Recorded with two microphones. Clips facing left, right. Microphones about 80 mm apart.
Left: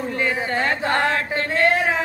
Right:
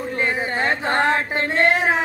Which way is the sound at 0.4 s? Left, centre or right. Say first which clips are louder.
Even; right.